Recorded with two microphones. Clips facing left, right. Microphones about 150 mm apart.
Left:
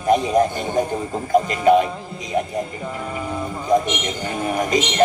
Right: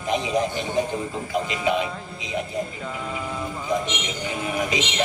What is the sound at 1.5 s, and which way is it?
Speech, 45° left (ahead or behind).